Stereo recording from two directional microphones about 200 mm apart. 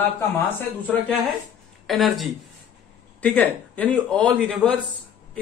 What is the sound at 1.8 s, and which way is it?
A man's voice, centre (ahead or behind).